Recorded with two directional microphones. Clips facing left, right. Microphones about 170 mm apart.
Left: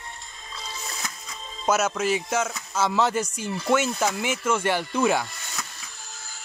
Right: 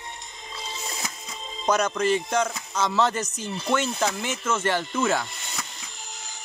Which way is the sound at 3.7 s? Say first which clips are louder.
Left 2 dB; 10° left (ahead or behind).